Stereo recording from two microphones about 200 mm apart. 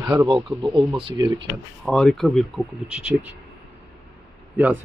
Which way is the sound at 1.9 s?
5° left (ahead or behind).